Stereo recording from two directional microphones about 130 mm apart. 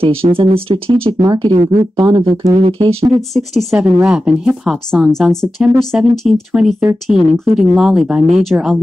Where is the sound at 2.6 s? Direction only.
45° right (ahead or behind).